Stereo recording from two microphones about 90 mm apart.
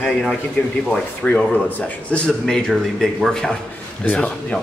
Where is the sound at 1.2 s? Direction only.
20° left (ahead or behind).